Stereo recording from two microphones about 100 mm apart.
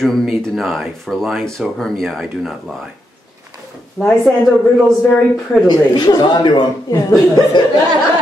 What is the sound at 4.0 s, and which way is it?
Speech, 5° left (ahead or behind).